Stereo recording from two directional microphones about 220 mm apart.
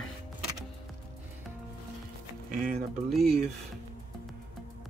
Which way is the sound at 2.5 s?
40° right (ahead or behind).